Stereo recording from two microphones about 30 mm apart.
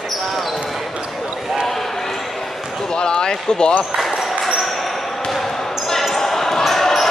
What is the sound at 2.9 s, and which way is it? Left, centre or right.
Speech, left.